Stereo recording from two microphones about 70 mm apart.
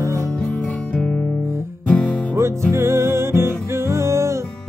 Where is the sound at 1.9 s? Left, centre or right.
Centre.